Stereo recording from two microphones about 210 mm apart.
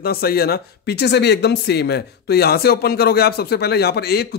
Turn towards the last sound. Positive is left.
turn(degrees=50)  # may be behind; listen again after turning